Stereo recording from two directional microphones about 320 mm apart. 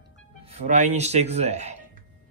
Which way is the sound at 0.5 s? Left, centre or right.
Right.